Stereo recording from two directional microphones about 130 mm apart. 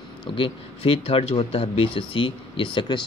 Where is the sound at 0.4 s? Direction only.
45° left (ahead or behind).